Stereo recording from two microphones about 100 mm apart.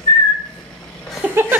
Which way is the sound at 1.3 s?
20° right (ahead or behind).